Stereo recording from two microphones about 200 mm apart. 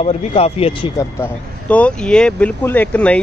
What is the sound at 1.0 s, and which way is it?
Speech, 10° left (ahead or behind).